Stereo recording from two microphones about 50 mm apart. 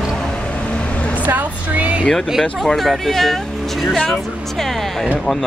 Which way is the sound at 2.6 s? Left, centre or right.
Centre.